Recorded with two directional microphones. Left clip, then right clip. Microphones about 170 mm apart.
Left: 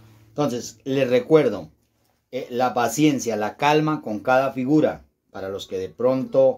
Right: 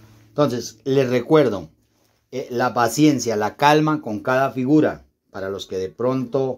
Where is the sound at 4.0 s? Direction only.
25° right (ahead or behind).